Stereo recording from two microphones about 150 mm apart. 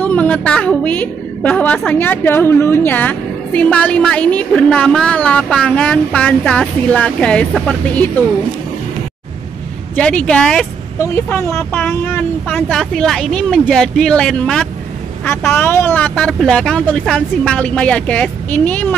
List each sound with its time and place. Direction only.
0.0 s a woman's voice: 10° left (ahead or behind)
9.9 s speech: 5° left (ahead or behind)
11.0 s a woman's voice: 15° left (ahead or behind)